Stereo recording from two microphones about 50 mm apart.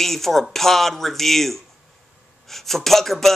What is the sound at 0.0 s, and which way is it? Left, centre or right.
Speech, centre.